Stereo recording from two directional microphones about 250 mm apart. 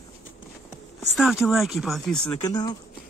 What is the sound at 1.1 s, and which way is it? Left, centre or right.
Speech, centre.